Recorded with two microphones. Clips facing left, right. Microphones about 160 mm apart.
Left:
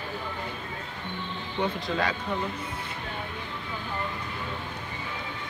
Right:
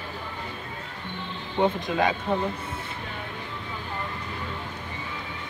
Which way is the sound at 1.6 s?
20° right (ahead or behind).